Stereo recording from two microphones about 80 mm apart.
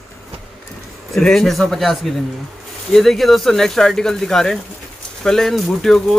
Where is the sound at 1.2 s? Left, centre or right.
Centre.